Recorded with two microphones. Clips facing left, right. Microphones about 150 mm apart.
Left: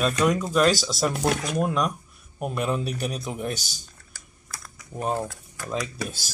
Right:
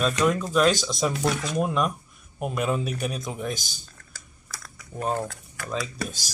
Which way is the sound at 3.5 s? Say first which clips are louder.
Even; 40° left (ahead or behind).